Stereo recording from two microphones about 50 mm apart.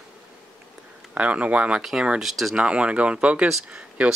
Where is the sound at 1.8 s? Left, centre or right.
Centre.